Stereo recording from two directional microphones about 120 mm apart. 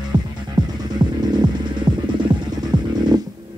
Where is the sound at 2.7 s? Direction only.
40° right (ahead or behind).